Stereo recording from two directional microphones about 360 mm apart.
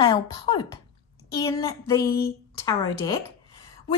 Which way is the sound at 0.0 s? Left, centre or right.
Centre.